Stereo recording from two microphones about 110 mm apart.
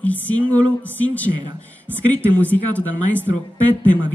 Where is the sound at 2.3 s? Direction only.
15° left (ahead or behind).